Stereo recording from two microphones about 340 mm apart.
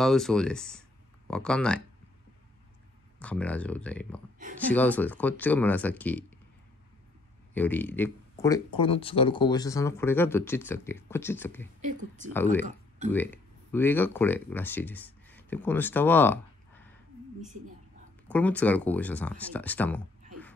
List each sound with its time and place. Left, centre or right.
0.0 s speech: centre
3.2 s speech: centre
7.5 s speech: centre
11.8 s speech: right
13.1 s speech: centre
18.3 s speech: centre